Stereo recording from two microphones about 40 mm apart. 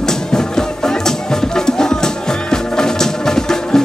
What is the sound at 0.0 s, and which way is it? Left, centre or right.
Music, centre.